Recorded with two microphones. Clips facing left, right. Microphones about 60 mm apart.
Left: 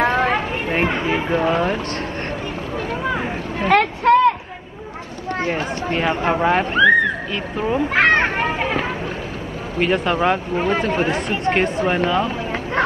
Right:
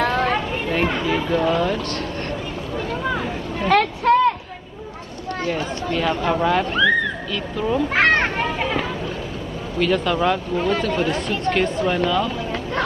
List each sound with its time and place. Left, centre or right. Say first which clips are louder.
0.0 s a sound: left 2 dB; centre
0.7 s chatter: left 1 dB; left
2.9 s vehicle: left 1 dB; centre
5.4 s speech: left 1 dB; left
6.7 s speech: left 4 dB; centre
7.9 s a child's voice: left 2 dB; centre
8.4 s speech: left 2 dB; left